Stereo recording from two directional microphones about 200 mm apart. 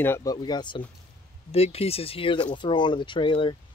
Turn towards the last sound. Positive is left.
turn(degrees=25)  # may be behind; listen again after turning